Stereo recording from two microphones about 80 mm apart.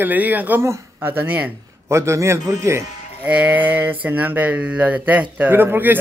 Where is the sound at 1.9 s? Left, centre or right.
Right.